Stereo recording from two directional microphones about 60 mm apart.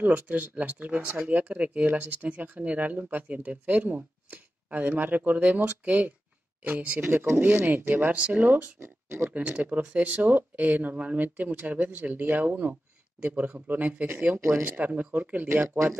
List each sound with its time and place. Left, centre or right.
0.0 s speech: right
8.8 s speech: right
9.3 s speech: right
14.6 s speech: right